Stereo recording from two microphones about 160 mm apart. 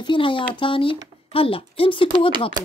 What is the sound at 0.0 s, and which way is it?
Speech, 30° left (ahead or behind).